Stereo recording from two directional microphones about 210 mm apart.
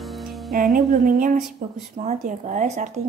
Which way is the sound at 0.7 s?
45° right (ahead or behind).